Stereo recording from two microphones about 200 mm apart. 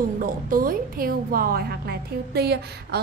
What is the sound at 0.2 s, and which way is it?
A woman's voice, 45° right (ahead or behind).